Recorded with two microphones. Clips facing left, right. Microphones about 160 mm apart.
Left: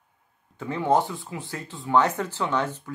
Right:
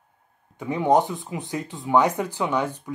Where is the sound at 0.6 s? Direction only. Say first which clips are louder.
Right 3 dB; 15° right (ahead or behind).